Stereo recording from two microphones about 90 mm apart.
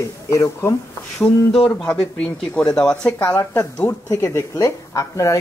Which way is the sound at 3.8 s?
35° left (ahead or behind).